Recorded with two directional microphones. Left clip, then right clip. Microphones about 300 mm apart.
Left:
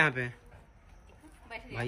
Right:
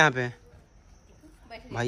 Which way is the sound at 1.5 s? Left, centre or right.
Centre.